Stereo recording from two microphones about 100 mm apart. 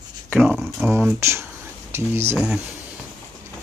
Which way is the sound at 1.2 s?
25° right (ahead or behind).